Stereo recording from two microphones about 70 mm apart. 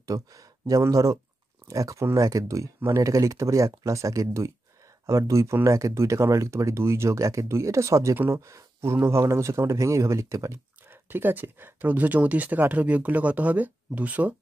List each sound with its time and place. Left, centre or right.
0.0 s speech: right
10.9 s speech: right